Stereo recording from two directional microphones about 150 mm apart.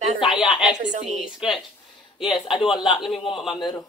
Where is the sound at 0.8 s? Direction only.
55° right (ahead or behind).